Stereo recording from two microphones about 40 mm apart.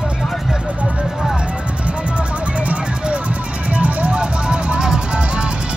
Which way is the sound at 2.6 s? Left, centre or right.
Right.